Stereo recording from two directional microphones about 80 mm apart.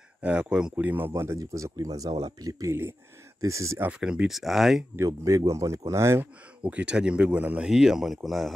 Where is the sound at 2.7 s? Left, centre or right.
Right.